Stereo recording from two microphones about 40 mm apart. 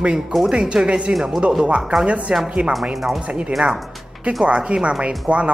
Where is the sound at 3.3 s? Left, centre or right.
Right.